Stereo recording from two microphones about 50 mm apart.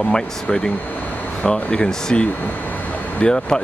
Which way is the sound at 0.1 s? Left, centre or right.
Left.